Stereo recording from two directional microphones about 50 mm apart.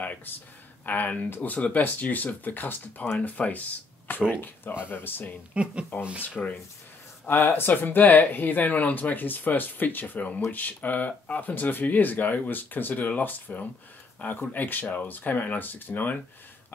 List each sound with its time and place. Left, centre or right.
0.3 s speech: left
4.3 s speech: left
5.5 s speech: right
6.2 s speech: left
7.3 s speech: left
7.6 s speech: left